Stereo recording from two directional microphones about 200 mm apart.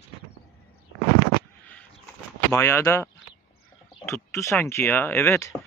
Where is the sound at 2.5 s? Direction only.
15° left (ahead or behind).